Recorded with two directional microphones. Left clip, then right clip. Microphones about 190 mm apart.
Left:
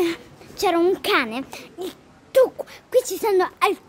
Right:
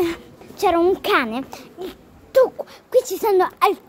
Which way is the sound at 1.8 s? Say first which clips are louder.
Left 1 dB; 10° left (ahead or behind).